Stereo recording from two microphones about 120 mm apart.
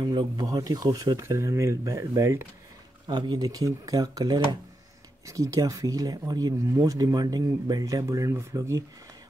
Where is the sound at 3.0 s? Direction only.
35° right (ahead or behind).